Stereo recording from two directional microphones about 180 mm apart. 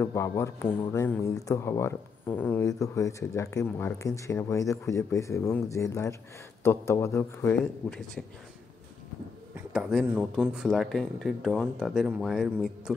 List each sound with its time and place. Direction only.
0.0 s a man's voice: 15° left (ahead or behind)
9.6 s speech: 5° right (ahead or behind)